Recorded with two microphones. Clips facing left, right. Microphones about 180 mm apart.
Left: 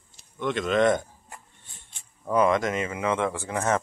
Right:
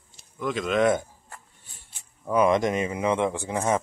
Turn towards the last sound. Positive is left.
turn(degrees=-15)  # may be behind; listen again after turning